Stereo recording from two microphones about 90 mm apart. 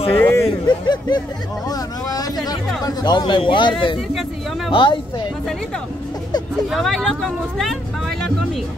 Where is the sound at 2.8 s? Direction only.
55° left (ahead or behind).